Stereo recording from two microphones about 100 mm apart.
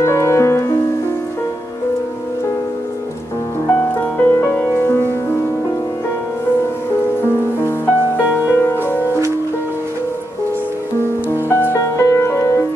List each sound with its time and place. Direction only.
0.0 s music: 30° left (ahead or behind)
3.9 s music: 20° left (ahead or behind)
8.2 s music: 25° left (ahead or behind)
11.0 s music: 25° left (ahead or behind)